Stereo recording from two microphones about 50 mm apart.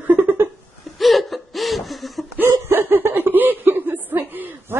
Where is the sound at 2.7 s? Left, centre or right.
Right.